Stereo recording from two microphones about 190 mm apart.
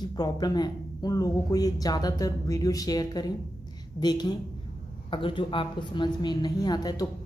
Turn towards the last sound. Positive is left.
turn(degrees=20)  # may be behind; listen again after turning